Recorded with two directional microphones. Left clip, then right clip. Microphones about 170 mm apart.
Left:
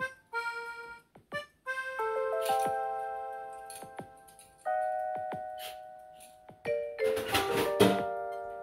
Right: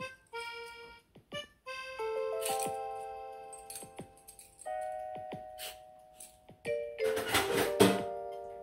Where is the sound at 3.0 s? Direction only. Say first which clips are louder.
Left 6 dB; 35° left (ahead or behind).